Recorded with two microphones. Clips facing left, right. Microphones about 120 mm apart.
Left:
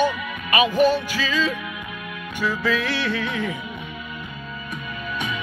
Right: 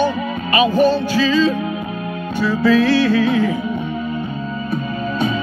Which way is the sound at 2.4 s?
15° left (ahead or behind).